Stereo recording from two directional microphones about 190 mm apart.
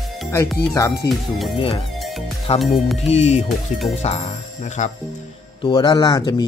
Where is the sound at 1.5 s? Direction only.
30° left (ahead or behind).